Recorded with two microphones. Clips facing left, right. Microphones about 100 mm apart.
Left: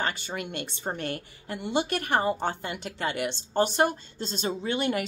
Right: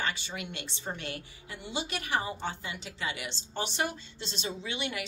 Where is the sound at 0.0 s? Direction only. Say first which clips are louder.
Left 4 dB; 50° left (ahead or behind).